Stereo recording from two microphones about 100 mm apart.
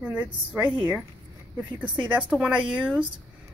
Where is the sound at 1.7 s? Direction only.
15° right (ahead or behind).